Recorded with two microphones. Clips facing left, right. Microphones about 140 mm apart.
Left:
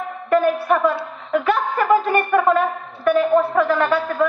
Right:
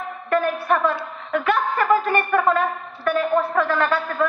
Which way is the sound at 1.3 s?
5° left (ahead or behind).